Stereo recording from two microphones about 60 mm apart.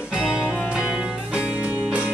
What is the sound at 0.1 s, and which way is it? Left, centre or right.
Music, centre.